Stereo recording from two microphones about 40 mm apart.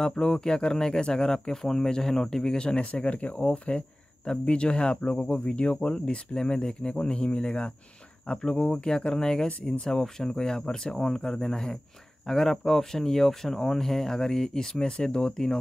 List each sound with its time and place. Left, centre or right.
0.0 s speech: centre